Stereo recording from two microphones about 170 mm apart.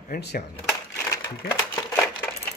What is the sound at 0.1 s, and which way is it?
Speech, 80° left.